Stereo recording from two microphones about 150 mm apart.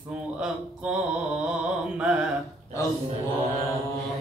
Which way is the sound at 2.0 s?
10° right (ahead or behind).